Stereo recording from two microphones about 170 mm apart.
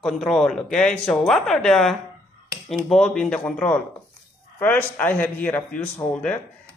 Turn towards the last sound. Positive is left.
turn(degrees=10)  # may be behind; listen again after turning